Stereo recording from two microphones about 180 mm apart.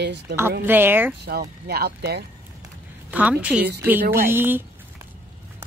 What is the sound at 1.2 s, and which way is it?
Speech, 60° right (ahead or behind).